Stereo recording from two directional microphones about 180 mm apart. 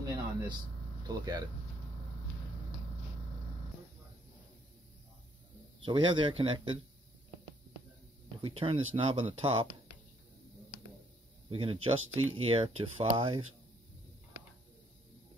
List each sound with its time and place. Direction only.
0.0 s vehicle: 20° right (ahead or behind)
1.0 s speech: 25° right (ahead or behind)
5.9 s speech: 25° right (ahead or behind)
8.4 s speech: 30° right (ahead or behind)
11.5 s speech: 30° right (ahead or behind)